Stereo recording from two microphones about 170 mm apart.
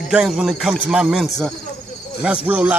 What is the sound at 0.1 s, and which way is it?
A man's voice, 5° right (ahead or behind).